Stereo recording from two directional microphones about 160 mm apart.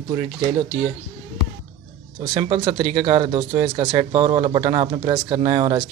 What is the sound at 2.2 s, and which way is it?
Speech, 35° right (ahead or behind).